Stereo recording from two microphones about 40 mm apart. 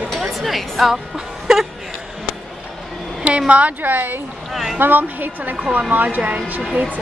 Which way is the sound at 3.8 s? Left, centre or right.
Right.